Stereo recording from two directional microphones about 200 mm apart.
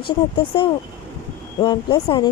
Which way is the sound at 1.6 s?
20° left (ahead or behind).